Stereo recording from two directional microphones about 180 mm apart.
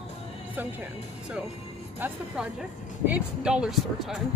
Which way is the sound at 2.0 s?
10° right (ahead or behind).